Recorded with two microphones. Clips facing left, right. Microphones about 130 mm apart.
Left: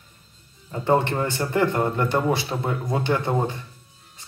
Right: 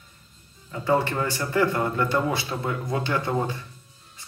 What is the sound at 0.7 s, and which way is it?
A man's voice, 25° left (ahead or behind).